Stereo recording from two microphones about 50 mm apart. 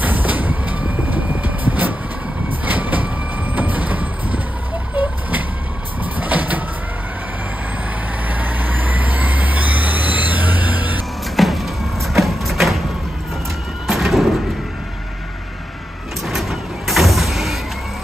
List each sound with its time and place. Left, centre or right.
0.0 s vehicle: right
6.1 s vehicle: right
8.3 s vehicle: right
11.3 s a sound: centre
13.8 s neigh: centre
16.3 s vehicle: centre